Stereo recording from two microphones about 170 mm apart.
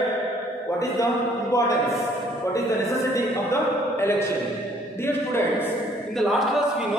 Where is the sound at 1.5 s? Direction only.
20° left (ahead or behind).